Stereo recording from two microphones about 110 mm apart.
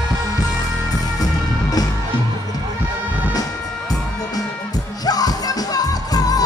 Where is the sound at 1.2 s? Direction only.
35° left (ahead or behind).